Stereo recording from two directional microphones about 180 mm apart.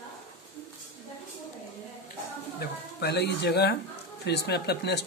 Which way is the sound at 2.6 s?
65° left (ahead or behind).